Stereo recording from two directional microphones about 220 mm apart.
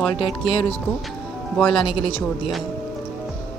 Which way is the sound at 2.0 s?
25° left (ahead or behind).